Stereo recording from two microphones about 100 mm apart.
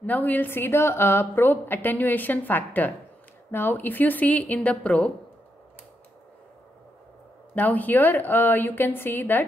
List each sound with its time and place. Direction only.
0.0 s a woman's voice: 15° left (ahead or behind)
7.5 s a woman's voice: 15° left (ahead or behind)